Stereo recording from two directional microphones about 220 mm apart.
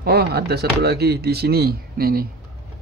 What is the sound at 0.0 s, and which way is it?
Speech, 45° right (ahead or behind).